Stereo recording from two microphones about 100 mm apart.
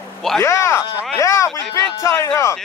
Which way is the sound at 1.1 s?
30° left (ahead or behind).